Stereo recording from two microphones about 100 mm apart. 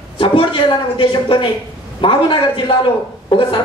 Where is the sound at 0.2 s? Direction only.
55° left (ahead or behind).